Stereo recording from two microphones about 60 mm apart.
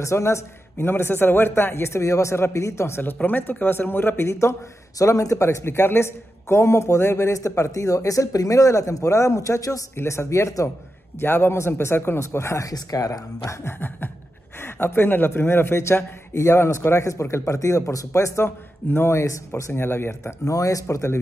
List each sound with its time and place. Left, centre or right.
0.0 s a man's voice: left
0.8 s a man's voice: left
3.2 s speech: left
4.3 s a man's voice: left
4.9 s a man's voice: left
9.9 s a man's voice: left
11.1 s a man's voice: left
12.6 s speech: left
13.5 s a man's voice: left
20.4 s a man's voice: left